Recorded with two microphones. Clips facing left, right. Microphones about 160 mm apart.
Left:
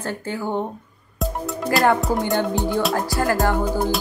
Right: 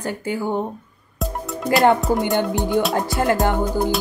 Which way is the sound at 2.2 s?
20° right (ahead or behind).